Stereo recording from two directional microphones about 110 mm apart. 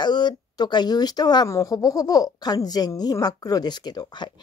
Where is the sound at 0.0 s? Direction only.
40° left (ahead or behind).